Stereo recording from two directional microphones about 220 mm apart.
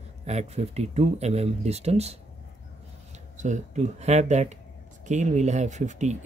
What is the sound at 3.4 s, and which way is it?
Speech, 30° right (ahead or behind).